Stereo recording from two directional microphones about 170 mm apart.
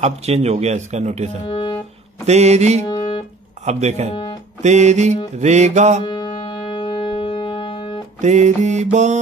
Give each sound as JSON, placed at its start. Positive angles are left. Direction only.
{"t": 0.0, "sound": "a man's voice", "side_deg": -40}
{"t": 1.5, "sound": "music", "side_deg": 25}
{"t": 2.2, "sound": "a man's voice", "side_deg": -40}
{"t": 4.6, "sound": "mantra", "side_deg": -45}
{"t": 6.0, "sound": "music", "side_deg": 30}
{"t": 8.2, "sound": "mantra", "side_deg": -45}